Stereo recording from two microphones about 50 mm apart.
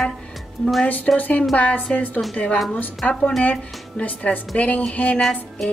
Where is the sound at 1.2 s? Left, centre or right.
Left.